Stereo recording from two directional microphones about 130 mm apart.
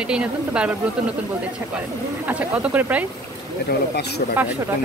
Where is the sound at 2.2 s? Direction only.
15° right (ahead or behind).